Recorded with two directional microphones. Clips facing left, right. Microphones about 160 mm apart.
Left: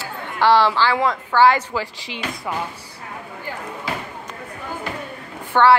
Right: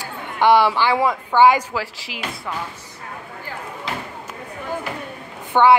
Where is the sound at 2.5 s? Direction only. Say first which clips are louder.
Left 3 dB; 15° left (ahead or behind).